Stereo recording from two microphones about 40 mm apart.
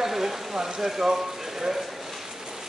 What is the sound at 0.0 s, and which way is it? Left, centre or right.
Speech, centre.